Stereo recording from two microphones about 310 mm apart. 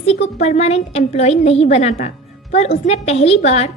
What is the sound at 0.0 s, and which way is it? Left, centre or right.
A woman's voice, centre.